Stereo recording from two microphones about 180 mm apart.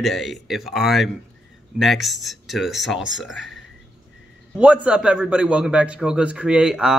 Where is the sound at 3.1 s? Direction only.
90° left.